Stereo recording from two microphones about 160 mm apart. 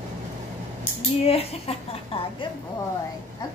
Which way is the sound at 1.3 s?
35° left (ahead or behind).